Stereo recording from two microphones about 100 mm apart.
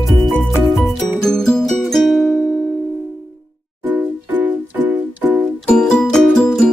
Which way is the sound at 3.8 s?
15° right (ahead or behind).